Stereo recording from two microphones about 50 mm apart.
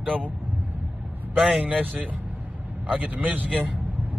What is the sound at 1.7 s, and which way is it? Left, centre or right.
Speech, right.